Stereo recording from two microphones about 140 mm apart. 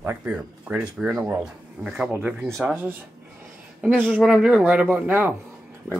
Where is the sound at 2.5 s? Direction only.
Centre (ahead or behind).